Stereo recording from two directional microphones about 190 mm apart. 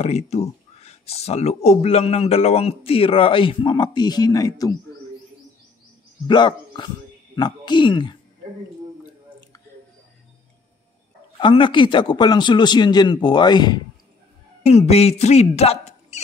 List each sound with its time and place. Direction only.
0.0 s speech: 35° left (ahead or behind); by 4.7 s 20° left (ahead or behind)
6.2 s a man's voice: 25° left (ahead or behind)
11.3 s a man's voice: 25° left (ahead or behind)
14.7 s speech: 35° left (ahead or behind)